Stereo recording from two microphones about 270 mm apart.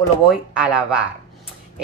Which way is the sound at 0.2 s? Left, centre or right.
Centre.